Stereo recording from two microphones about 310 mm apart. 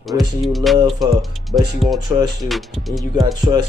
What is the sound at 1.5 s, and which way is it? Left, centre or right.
Speech, centre.